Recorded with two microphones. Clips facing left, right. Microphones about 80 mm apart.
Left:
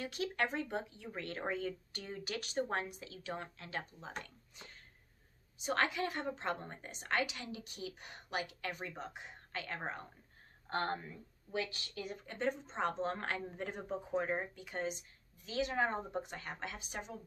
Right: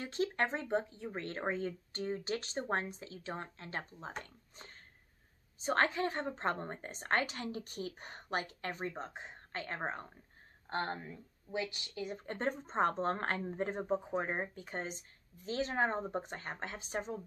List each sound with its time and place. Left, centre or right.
0.0 s a woman's voice: right
4.2 s a sound: right
5.6 s a woman's voice: right
10.7 s speech: centre
12.2 s a woman's voice: right